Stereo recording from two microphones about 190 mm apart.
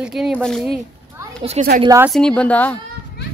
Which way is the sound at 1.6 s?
35° right (ahead or behind).